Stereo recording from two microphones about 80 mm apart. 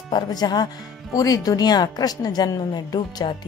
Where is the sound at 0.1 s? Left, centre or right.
Left.